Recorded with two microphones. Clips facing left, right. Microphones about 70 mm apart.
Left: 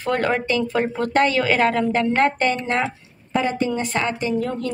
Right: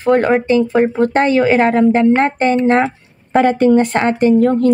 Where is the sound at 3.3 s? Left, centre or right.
Right.